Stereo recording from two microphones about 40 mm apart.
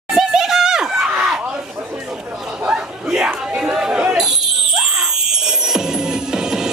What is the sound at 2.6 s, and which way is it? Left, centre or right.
Chatter, right.